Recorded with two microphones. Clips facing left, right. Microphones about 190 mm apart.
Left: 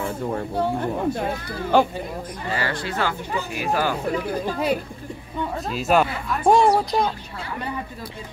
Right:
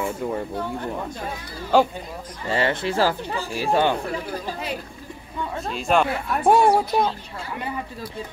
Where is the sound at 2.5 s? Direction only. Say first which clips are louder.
Right 5 dB; 25° right (ahead or behind).